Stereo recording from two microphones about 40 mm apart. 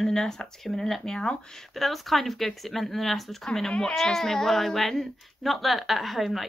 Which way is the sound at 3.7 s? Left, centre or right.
Left.